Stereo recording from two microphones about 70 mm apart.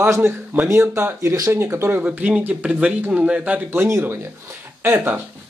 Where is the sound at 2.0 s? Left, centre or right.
Right.